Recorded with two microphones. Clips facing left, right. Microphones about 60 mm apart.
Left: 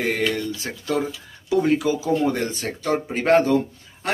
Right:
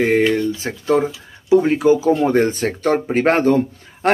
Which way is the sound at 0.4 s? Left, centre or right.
Right.